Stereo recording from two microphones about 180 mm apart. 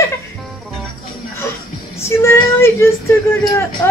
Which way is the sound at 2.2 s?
15° left (ahead or behind).